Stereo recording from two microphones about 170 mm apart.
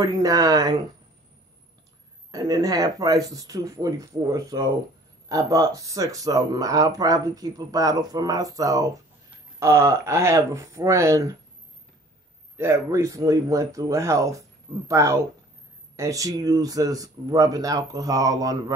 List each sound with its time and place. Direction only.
0.0 s speech: 20° right (ahead or behind)
2.3 s speech: 20° right (ahead or behind)
12.5 s speech: 15° right (ahead or behind)